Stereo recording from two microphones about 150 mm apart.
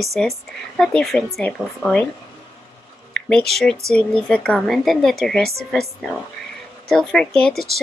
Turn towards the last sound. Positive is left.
turn(degrees=0)  # may be behind; listen again after turning